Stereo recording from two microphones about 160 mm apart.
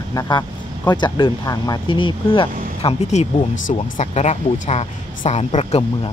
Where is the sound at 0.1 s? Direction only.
25° left (ahead or behind).